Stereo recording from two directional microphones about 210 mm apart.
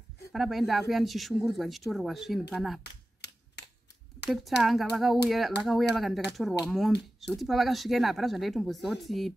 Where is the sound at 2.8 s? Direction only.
55° left (ahead or behind).